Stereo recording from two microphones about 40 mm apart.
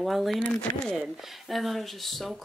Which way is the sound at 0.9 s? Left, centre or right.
Centre.